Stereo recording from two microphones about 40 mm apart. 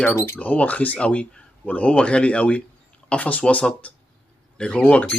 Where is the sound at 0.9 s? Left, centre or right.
Left.